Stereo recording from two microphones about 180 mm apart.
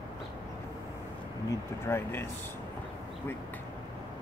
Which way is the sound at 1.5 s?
15° left (ahead or behind).